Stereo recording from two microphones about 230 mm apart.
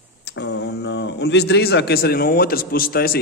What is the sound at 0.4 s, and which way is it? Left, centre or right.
Speech, left.